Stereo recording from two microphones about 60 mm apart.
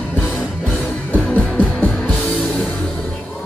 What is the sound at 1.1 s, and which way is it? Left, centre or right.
Music, left.